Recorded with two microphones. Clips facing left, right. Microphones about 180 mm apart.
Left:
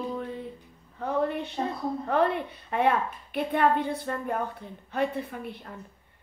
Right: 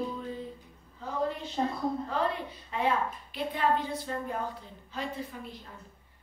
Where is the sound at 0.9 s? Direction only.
60° left (ahead or behind).